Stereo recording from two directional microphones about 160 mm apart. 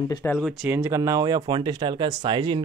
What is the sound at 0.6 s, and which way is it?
Speech, 15° right (ahead or behind).